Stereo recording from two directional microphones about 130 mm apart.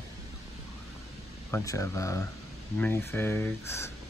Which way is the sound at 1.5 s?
25° left (ahead or behind).